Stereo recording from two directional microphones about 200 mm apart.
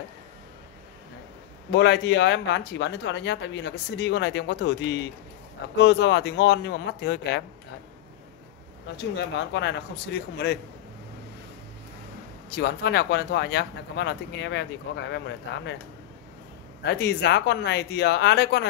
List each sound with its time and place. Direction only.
1.7 s speech: 60° left (ahead or behind)
8.9 s speech: 60° left (ahead or behind)
12.4 s speech: 55° left (ahead or behind)
16.8 s speech: 55° left (ahead or behind)